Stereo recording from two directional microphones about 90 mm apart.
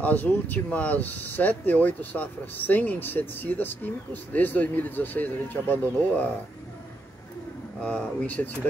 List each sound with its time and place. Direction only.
0.0 s speech: 20° left (ahead or behind)
7.8 s speech: 10° left (ahead or behind)